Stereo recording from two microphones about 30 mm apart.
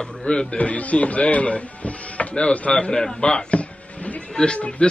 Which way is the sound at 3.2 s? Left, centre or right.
Left.